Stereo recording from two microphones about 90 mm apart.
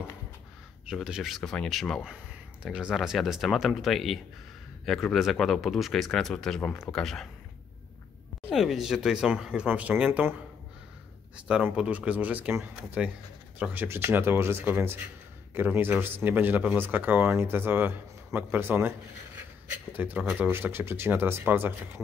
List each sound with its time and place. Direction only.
0.8 s speech: 10° right (ahead or behind)
2.6 s speech: 10° right (ahead or behind)
8.5 s speech: centre (ahead or behind)
11.7 s a man's voice: 10° right (ahead or behind)